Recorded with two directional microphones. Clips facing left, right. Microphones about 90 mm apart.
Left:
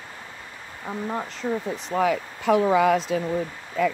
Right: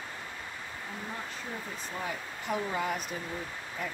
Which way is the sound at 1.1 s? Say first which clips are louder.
Left 14 dB; 90° left.